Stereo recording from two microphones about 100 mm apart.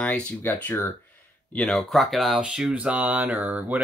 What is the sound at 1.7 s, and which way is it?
Speech, centre (ahead or behind).